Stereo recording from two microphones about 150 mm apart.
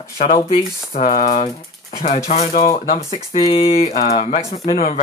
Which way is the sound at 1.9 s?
50° left (ahead or behind).